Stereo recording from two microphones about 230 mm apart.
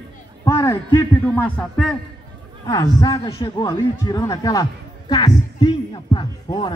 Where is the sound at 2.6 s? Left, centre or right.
Centre.